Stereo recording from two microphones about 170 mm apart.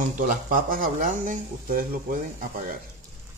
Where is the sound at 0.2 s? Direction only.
50° right (ahead or behind).